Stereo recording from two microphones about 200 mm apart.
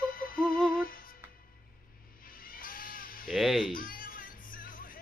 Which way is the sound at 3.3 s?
Centre (ahead or behind).